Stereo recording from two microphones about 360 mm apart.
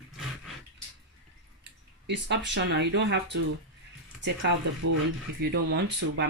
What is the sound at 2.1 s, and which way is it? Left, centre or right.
Speech, right.